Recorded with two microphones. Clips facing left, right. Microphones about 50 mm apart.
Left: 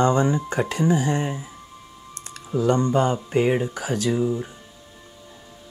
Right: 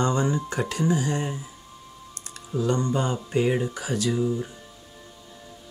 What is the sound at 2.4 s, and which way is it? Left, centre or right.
Speech, left.